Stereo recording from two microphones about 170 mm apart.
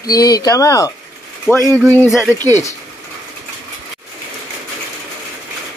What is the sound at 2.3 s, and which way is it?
Speech, 15° left (ahead or behind).